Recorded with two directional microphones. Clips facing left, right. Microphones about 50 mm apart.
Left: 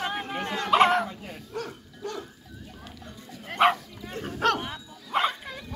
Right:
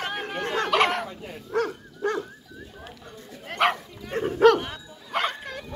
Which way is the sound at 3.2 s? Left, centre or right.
Centre.